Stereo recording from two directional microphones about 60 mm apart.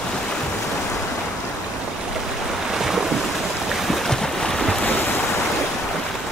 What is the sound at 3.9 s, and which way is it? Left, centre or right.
Boat, centre.